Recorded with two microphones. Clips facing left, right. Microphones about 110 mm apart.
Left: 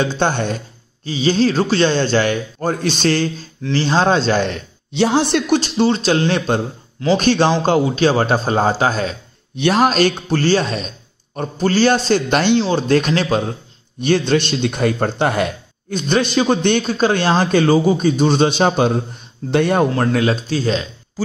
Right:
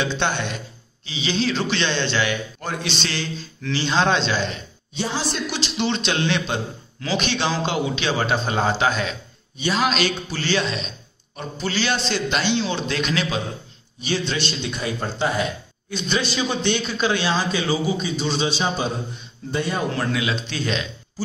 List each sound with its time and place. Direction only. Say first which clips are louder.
0.0 s speech: left 5 dB; 45° left (ahead or behind)
4.9 s speech: left 10 dB; 70° left (ahead or behind); by 9.1 s 40° left (ahead or behind)
9.6 s speech: left 8 dB; 60° left (ahead or behind)
9.8 s speech: left 7 dB; 50° left (ahead or behind)
19.9 s speech: left 7 dB; 45° left (ahead or behind)